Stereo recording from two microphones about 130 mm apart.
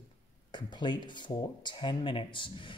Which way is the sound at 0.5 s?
35° left (ahead or behind).